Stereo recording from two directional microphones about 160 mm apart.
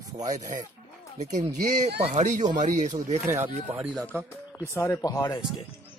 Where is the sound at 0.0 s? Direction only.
20° right (ahead or behind).